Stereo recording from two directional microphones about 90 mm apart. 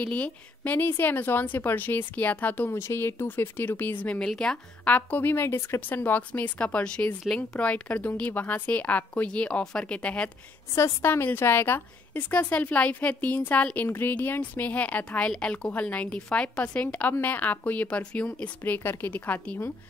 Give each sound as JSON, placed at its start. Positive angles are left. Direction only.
{"t": 0.0, "sound": "a woman's voice", "side_deg": 15}
{"t": 2.8, "sound": "a woman's voice", "side_deg": 30}
{"t": 4.9, "sound": "speech", "side_deg": 20}
{"t": 10.7, "sound": "a woman's voice", "side_deg": 30}